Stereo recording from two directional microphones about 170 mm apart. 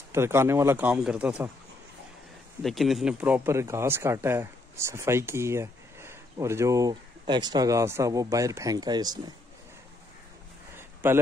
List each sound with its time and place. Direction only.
0.1 s speech: 15° right (ahead or behind)
2.6 s speech: centre (ahead or behind); by 9.2 s 25° right (ahead or behind)
10.8 s a sound: 15° right (ahead or behind)